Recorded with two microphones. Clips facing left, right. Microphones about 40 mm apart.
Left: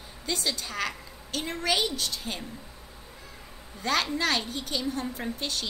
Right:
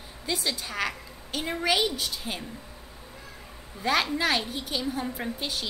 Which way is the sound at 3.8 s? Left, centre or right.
Centre.